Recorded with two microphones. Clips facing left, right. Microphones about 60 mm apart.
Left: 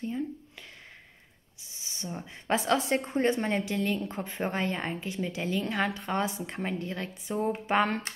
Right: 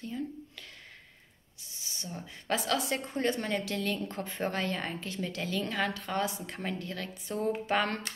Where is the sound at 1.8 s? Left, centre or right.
Left.